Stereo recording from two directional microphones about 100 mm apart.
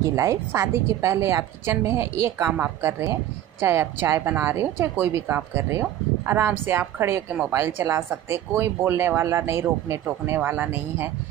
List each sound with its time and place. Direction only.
0.0 s a woman's voice: 30° right (ahead or behind)